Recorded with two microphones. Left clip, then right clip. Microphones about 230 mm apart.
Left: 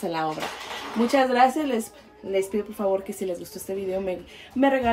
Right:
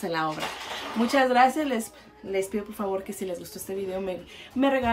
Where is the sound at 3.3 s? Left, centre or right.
Centre.